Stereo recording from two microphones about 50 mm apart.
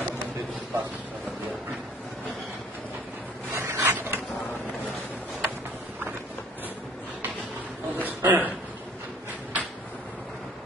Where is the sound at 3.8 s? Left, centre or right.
Right.